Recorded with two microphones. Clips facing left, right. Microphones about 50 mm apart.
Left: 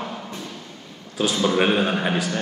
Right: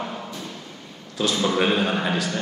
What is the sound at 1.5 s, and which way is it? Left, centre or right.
Speech, centre.